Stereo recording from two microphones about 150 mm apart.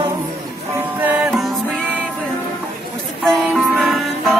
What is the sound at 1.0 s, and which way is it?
Music, 10° right (ahead or behind).